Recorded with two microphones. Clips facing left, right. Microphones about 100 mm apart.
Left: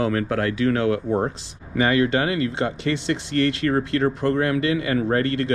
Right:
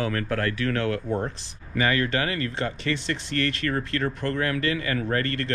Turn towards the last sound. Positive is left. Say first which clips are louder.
# left 5 dB
turn(degrees=15)  # may be behind; listen again after turning